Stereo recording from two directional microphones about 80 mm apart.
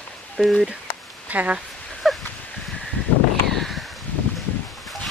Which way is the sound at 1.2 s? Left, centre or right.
Centre.